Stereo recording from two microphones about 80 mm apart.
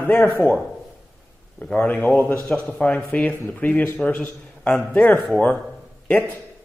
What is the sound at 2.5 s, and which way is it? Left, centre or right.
A man's voice, centre.